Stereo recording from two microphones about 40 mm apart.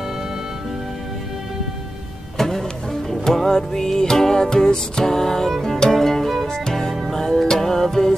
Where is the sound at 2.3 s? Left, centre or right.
Centre.